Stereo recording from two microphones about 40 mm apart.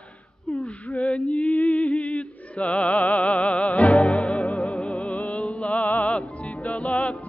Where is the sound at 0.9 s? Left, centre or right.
Left.